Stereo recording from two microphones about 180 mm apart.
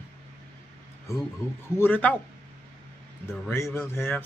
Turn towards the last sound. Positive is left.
turn(degrees=10)  # may be behind; listen again after turning